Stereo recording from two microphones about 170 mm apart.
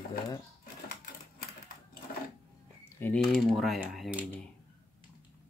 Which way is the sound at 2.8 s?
10° left (ahead or behind).